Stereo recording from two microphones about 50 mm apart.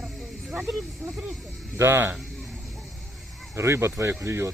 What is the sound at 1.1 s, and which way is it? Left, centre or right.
Speech, centre.